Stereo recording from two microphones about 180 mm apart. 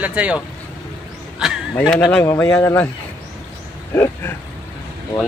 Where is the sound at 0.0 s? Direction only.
10° right (ahead or behind).